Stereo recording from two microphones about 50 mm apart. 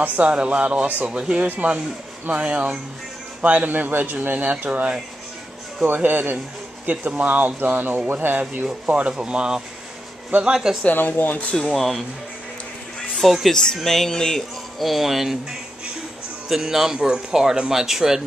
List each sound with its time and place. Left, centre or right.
0.0 s speech: right
5.9 s speech: right
8.8 s speech: right
9.1 s a man's voice: centre
11.0 s speech: left
11.7 s speech: centre
13.1 s speech: centre
13.5 s speech: centre
16.4 s a man's voice: centre